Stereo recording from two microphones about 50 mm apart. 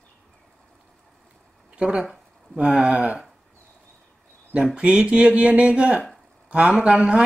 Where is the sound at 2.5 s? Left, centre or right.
Centre.